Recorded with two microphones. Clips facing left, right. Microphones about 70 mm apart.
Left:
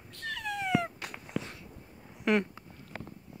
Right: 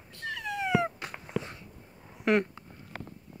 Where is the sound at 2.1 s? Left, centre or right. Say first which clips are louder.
Right 2 dB; centre.